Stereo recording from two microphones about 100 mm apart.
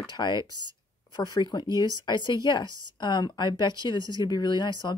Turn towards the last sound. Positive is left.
turn(degrees=45)  # may be behind; listen again after turning